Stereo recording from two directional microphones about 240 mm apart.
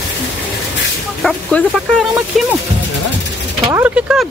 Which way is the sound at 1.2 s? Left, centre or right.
Centre.